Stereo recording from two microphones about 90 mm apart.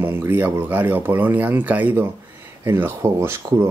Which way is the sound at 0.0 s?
25° right (ahead or behind).